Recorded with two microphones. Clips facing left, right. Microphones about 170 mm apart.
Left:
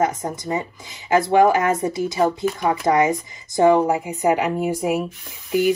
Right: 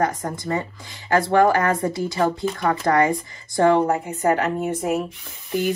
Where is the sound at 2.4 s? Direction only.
10° left (ahead or behind).